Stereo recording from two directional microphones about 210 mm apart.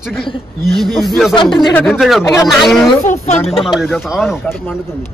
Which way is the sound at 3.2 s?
30° left (ahead or behind).